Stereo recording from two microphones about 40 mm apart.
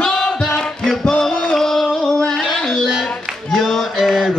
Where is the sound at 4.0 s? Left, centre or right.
Centre.